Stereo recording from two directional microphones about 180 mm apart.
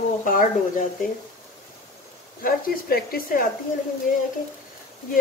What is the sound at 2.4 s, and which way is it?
Speech, 55° left (ahead or behind).